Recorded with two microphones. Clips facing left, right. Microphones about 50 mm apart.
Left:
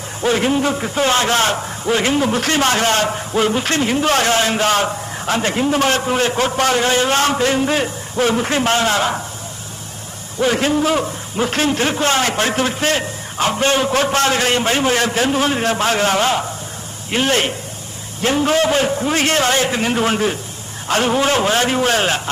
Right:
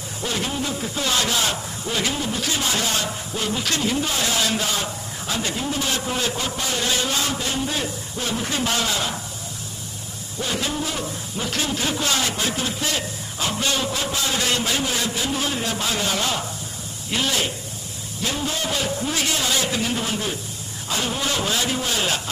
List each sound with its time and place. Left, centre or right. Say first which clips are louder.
0.2 s a man's voice: left 10 dB; left
2.1 s a man's voice: left 9 dB; left
4.6 s a man's voice: left 10 dB; left
6.0 s a man's voice: left 8 dB; left
6.9 s a man's voice: left 8 dB; left
10.4 s a man's voice: left 10 dB; left
14.5 s a man's voice: left 7 dB; left
18.7 s a man's voice: left 8 dB; left